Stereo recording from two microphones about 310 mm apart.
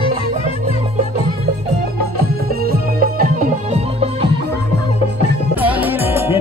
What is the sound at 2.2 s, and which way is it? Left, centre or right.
Music, right.